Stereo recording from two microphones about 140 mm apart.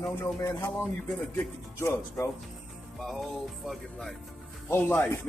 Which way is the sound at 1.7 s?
20° left (ahead or behind).